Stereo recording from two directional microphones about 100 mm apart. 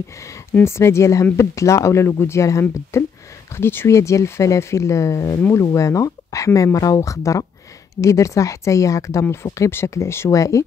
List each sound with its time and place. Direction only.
0.6 s speech: 25° left (ahead or behind)